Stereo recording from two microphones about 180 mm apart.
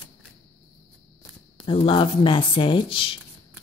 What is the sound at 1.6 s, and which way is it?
A woman's voice, 30° left (ahead or behind).